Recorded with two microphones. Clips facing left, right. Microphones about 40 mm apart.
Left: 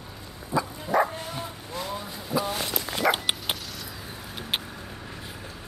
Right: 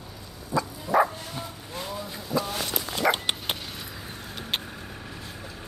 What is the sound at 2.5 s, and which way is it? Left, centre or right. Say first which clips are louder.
Dog: left 1 dB; centre.